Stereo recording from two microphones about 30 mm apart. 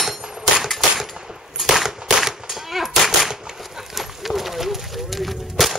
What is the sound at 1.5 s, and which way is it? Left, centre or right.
Cap gun, centre.